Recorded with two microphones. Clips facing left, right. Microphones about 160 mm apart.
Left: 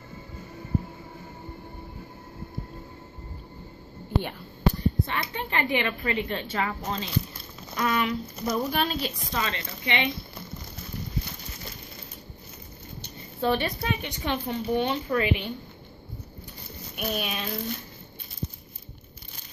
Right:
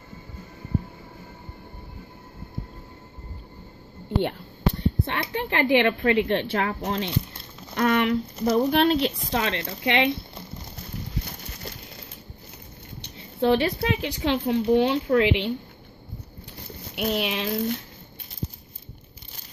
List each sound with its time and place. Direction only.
4.2 s speech: 65° right (ahead or behind)
7.7 s speech: 60° right (ahead or behind)
13.4 s speech: 75° right (ahead or behind)
16.9 s speech: 85° right